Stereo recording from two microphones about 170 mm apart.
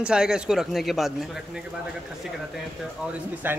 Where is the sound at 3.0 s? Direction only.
10° right (ahead or behind).